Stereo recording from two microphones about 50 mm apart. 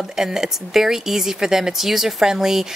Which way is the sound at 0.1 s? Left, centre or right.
Centre.